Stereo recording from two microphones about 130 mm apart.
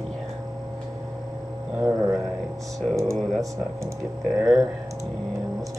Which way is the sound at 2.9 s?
25° right (ahead or behind).